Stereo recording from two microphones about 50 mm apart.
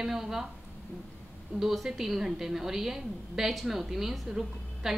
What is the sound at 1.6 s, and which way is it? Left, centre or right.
A woman's voice, centre.